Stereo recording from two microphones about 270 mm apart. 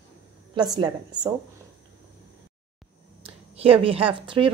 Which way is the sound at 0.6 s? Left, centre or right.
Centre.